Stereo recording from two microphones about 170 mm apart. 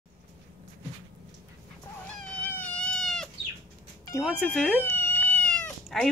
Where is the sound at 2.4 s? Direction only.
10° left (ahead or behind).